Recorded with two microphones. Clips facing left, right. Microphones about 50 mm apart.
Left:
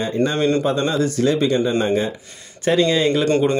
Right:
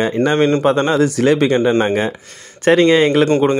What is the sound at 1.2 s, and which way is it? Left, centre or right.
Speech, right.